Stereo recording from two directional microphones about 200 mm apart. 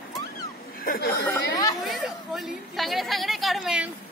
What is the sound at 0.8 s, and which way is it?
Speech, 45° left (ahead or behind).